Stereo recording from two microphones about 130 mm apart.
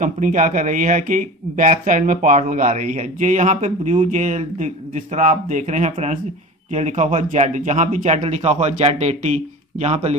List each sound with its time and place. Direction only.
0.0 s speech: 80° right
1.7 s speech: 70° right (ahead or behind); by 10.1 s 55° right (ahead or behind)